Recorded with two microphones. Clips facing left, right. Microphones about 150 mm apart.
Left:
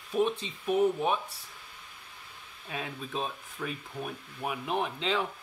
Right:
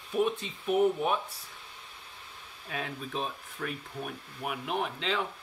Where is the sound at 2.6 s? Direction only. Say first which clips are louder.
Right 1 dB; centre (ahead or behind).